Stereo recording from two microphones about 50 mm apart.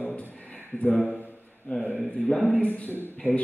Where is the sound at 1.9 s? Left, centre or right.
Left.